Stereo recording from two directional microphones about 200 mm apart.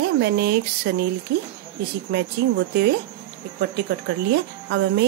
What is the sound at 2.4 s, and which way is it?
Speech, 55° right (ahead or behind).